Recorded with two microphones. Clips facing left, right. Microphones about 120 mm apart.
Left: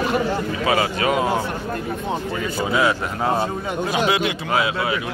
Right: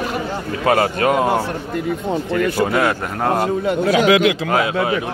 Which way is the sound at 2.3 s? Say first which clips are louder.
Right 8 dB; 65° right (ahead or behind).